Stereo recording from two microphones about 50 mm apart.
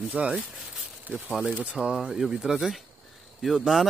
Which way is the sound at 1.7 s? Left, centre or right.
Centre.